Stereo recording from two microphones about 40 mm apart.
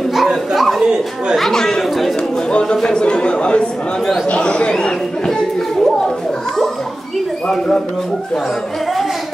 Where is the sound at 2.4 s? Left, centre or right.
Left.